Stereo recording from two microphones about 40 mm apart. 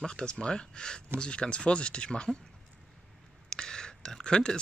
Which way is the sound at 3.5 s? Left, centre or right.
Centre.